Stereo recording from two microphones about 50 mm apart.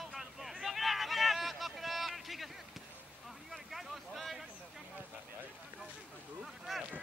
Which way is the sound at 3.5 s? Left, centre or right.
Centre.